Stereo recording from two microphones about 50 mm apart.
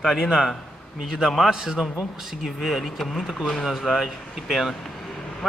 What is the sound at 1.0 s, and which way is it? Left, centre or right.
A man's voice, centre.